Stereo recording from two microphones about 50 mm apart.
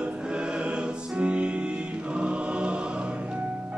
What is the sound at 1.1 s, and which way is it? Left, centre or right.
Music, right.